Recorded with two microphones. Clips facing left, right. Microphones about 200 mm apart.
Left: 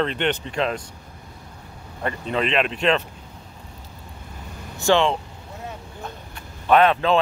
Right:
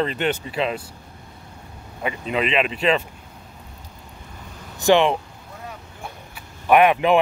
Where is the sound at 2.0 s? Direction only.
5° right (ahead or behind).